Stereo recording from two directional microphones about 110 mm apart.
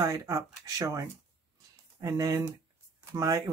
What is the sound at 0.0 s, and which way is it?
Speech, 30° right (ahead or behind).